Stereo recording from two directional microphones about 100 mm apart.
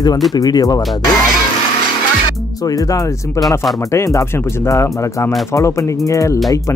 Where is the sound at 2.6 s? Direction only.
35° left (ahead or behind).